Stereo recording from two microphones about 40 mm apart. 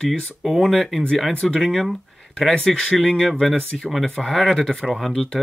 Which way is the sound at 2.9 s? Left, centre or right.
Centre.